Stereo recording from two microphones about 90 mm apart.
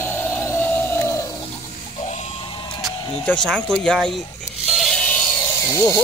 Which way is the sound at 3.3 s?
5° left (ahead or behind).